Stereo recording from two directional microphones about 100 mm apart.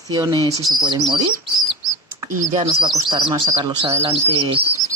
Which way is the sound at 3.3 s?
55° right (ahead or behind).